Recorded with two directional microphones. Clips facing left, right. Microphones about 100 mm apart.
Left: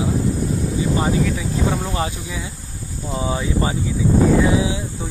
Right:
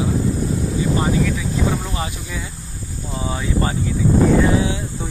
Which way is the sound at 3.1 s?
25° left (ahead or behind).